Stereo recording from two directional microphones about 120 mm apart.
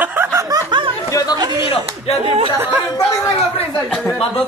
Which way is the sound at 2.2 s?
45° right (ahead or behind).